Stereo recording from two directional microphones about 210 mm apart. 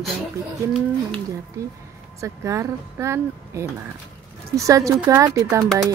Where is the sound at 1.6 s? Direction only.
15° right (ahead or behind).